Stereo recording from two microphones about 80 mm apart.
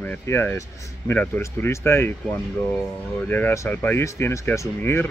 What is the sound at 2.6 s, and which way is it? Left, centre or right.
Speech, centre.